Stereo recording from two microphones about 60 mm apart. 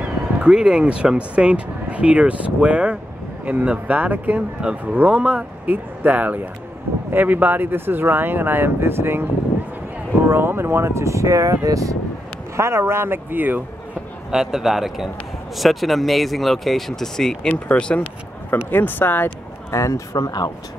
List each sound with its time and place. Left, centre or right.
0.4 s speech: centre
4.6 s a man's voice: centre; by 12.0 s right
12.5 s speech: right
14.3 s a man's voice: centre
17.5 s speech: centre
18.7 s speech: left
19.7 s speech: left